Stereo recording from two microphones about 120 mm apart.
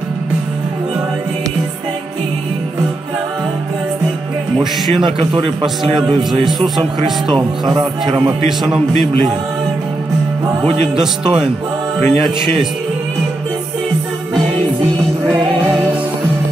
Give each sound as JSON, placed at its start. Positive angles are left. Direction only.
{"t": 4.6, "sound": "a man's voice", "side_deg": -40}
{"t": 8.5, "sound": "speech", "side_deg": -5}
{"t": 10.7, "sound": "a man's voice", "side_deg": -50}